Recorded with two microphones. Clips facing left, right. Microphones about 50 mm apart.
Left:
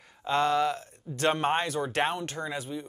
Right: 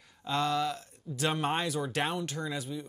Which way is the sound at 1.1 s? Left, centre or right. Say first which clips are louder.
Left 1 dB; left.